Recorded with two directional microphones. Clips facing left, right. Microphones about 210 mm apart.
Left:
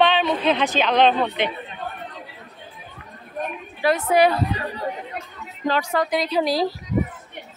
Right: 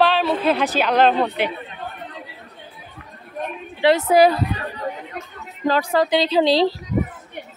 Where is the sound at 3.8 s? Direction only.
30° right (ahead or behind).